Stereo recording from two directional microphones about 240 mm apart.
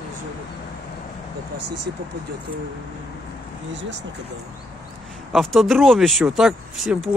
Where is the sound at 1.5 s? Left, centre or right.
Right.